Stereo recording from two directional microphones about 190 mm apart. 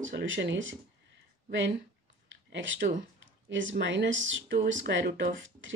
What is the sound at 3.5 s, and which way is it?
Speech, 80° right.